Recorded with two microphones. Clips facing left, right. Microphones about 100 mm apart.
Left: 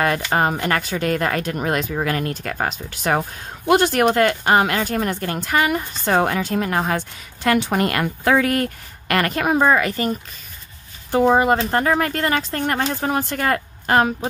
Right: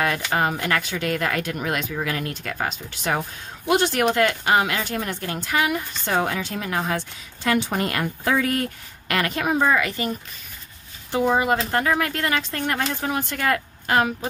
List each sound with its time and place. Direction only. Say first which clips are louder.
0.3 s speech: left 3 dB; 40° left (ahead or behind)